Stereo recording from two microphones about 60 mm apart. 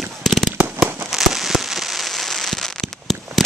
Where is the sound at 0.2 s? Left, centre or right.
Centre.